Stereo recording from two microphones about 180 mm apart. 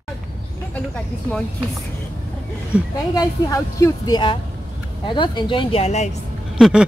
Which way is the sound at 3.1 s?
20° left (ahead or behind).